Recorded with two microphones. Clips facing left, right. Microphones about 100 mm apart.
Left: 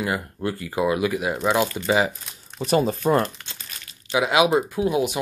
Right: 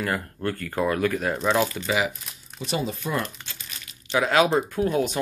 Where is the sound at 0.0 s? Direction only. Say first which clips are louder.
Left 1 dB; 15° left (ahead or behind).